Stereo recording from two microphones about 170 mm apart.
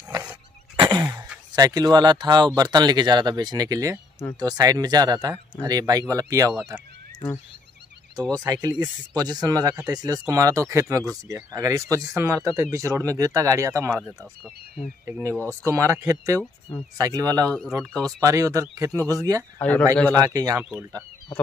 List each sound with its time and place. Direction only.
0.7 s a sound: 25° right (ahead or behind)
1.5 s speech: 25° right (ahead or behind)
8.2 s speech: 25° right (ahead or behind)
19.6 s speech: 10° left (ahead or behind)
20.2 s speech: 20° right (ahead or behind)